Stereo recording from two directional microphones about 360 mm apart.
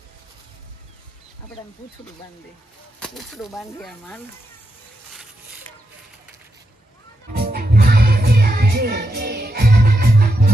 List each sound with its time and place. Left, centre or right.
3.0 s speech: centre
7.3 s music: right